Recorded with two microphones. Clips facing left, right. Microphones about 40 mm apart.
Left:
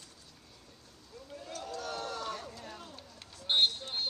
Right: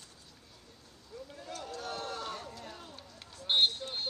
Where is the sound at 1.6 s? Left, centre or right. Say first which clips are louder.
Left 1 dB; right.